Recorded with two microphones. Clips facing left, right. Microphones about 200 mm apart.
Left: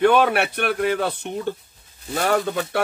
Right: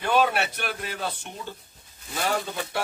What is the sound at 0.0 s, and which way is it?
Speech, 65° left (ahead or behind).